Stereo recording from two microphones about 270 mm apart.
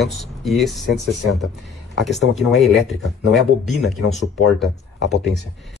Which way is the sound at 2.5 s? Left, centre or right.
Centre.